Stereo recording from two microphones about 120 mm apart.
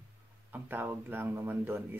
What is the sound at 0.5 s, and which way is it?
Speech, 15° right (ahead or behind).